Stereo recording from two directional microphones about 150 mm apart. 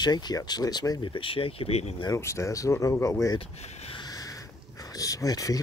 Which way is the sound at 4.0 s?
25° left (ahead or behind).